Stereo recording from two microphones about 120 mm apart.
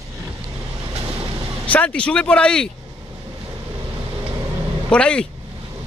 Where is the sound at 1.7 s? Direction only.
10° left (ahead or behind).